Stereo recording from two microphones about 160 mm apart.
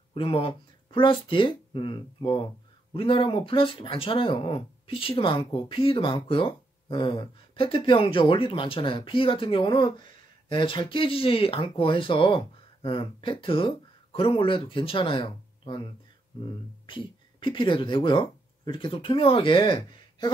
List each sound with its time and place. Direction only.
0.1 s speech: 35° left (ahead or behind)